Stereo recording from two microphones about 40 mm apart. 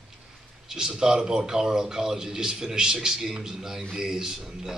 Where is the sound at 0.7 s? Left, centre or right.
Centre.